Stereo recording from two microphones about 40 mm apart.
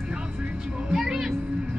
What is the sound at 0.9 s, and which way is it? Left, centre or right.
Music, centre.